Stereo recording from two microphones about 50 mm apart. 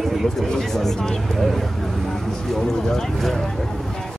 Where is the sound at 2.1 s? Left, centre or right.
Centre.